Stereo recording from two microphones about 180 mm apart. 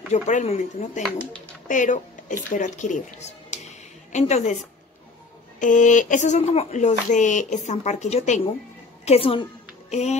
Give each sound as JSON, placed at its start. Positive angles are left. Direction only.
{"t": 0.1, "sound": "speech", "side_deg": 40}
{"t": 5.6, "sound": "a woman's voice", "side_deg": 45}